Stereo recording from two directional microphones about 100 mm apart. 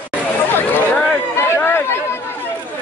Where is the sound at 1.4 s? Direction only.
25° left (ahead or behind).